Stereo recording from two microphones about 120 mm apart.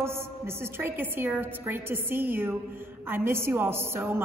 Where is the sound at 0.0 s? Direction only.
20° right (ahead or behind).